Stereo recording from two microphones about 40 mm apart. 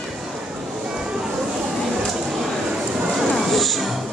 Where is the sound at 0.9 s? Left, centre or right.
Centre.